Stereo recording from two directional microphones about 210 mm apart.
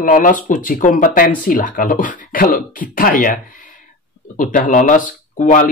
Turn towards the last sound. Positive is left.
turn(degrees=40)  # may be behind; listen again after turning